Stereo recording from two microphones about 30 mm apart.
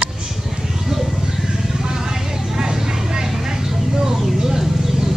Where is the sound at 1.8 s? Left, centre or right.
Centre.